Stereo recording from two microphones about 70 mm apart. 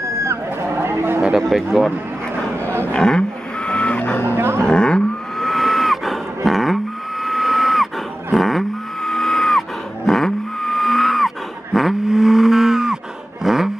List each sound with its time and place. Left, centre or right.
0.2 s a sound: right
1.5 s speech: centre
2.9 s vehicle: centre; by 4.4 s left
4.4 s cattle: right
4.6 s cattle: centre
13.4 s vehicle: centre